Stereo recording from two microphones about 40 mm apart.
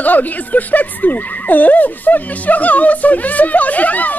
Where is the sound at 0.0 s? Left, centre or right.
Left.